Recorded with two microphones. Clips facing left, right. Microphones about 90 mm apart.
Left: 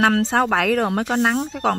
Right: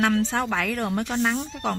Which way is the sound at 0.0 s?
75° left (ahead or behind).